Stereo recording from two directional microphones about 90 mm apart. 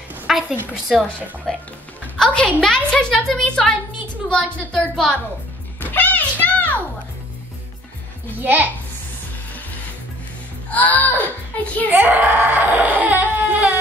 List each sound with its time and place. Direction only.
0.3 s a sound: 5° right (ahead or behind)
1.5 s a woman's voice: 5° left (ahead or behind)
5.8 s music: 20° left (ahead or behind)
8.4 s a child's voice: 20° right (ahead or behind)
10.7 s a woman's voice: 15° left (ahead or behind)
11.9 s baby cry: 20° right (ahead or behind)